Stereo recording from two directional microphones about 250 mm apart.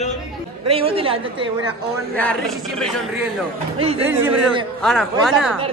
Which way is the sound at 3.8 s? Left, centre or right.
Right.